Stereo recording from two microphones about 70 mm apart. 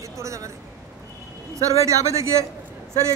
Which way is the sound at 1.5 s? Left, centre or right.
Right.